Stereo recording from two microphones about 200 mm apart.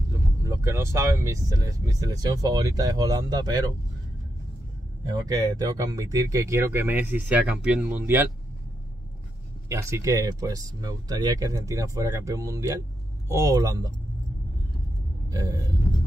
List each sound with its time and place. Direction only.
0.1 s speech: 15° right (ahead or behind)
5.0 s speech: 20° right (ahead or behind)
9.7 s speech: 15° right (ahead or behind)
15.2 s a sound: 20° right (ahead or behind)